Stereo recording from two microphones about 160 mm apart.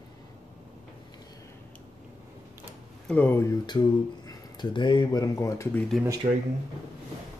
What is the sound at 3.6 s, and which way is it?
Speech, 25° left (ahead or behind).